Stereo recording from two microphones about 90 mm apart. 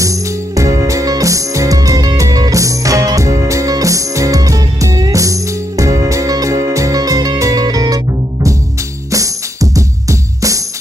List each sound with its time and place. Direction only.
0.0 s music: 35° right (ahead or behind)
9.1 s music: 40° right (ahead or behind)